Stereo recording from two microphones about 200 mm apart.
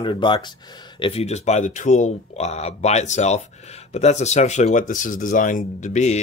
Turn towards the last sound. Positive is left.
turn(degrees=35)  # may be behind; listen again after turning